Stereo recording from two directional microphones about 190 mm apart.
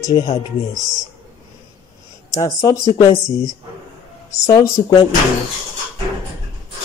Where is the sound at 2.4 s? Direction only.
15° left (ahead or behind).